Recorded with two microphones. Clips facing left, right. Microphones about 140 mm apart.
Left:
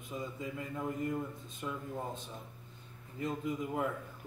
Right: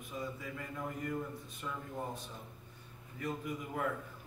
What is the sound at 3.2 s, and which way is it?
Speech, 20° left (ahead or behind).